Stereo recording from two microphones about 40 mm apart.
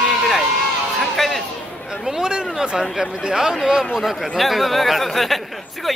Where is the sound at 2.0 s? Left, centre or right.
Centre.